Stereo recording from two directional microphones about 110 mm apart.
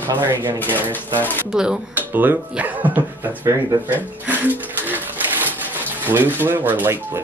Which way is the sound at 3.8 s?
15° right (ahead or behind).